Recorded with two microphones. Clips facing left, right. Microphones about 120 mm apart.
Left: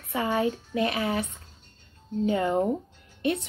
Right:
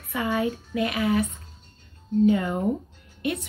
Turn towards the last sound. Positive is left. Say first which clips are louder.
# left 1 dB
turn(degrees=30)  # may be behind; listen again after turning